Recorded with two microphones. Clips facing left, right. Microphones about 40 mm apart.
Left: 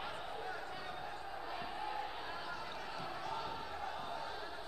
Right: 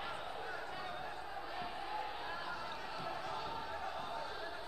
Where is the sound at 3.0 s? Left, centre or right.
Centre.